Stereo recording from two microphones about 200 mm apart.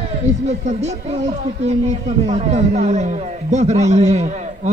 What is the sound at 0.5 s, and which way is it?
A man's voice, 35° right (ahead or behind).